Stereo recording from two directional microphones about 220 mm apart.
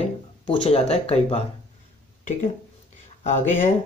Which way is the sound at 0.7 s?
25° left (ahead or behind).